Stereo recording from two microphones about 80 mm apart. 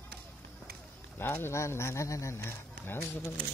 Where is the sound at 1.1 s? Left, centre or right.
Left.